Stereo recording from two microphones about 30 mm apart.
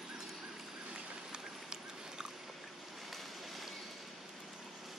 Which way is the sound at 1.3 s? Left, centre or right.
Right.